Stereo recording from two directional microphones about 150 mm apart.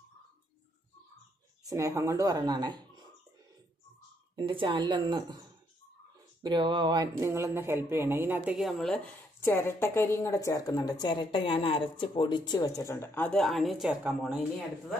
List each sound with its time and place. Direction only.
1.6 s speech: 20° right (ahead or behind)
4.4 s a woman's voice: 35° right (ahead or behind)
6.4 s speech: 30° right (ahead or behind); by 8.5 s 15° right (ahead or behind)
8.5 s a woman's voice: centre (ahead or behind)